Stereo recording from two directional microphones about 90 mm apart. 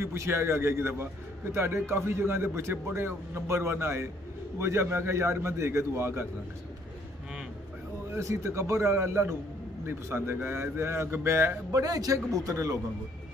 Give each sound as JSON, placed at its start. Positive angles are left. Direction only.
{"t": 0.0, "sound": "a man's voice", "side_deg": -30}
{"t": 8.1, "sound": "a man's voice", "side_deg": -35}
{"t": 11.8, "sound": "a man's voice", "side_deg": -40}